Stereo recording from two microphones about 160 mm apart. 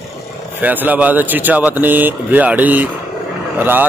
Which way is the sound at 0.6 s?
10° right (ahead or behind).